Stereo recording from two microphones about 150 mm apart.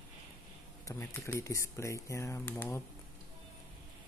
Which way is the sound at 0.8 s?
20° left (ahead or behind).